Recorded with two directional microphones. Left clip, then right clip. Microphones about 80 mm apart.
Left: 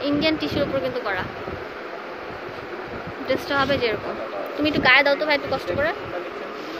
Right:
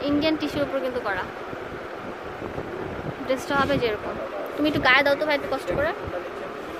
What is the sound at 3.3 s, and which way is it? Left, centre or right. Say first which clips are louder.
Speech: left 2 dB; centre.